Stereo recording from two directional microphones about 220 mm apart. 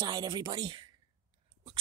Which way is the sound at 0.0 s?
15° right (ahead or behind).